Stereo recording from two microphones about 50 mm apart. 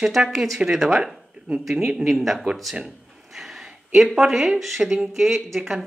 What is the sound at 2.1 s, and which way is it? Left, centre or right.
Speech, centre.